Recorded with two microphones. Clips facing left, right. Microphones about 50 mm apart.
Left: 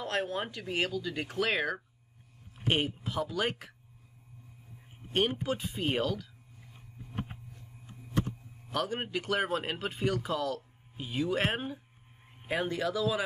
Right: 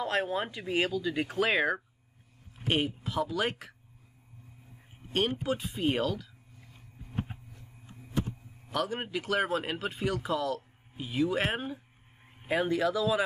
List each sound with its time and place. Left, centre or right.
0.0 s speech: centre
5.4 s speech: centre
8.7 s speech: centre